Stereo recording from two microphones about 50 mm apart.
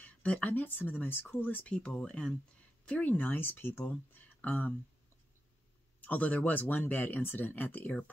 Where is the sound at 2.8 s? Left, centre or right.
Left.